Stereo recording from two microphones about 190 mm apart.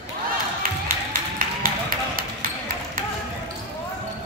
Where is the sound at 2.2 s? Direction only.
50° right (ahead or behind).